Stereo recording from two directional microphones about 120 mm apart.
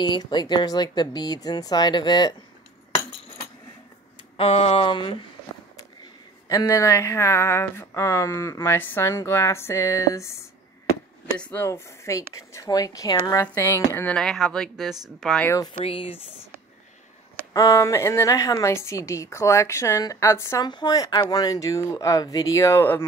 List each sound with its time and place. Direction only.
0.0 s speech: 40° left (ahead or behind)
4.4 s a sound: 55° left (ahead or behind)
6.5 s speech: 25° left (ahead or behind)
11.5 s speech: 20° left (ahead or behind)
14.1 s speech: 5° left (ahead or behind)
15.8 s a sound: 50° left (ahead or behind)
17.5 s speech: 30° left (ahead or behind)
20.6 s speech: 35° left (ahead or behind); by 23.0 s 20° left (ahead or behind)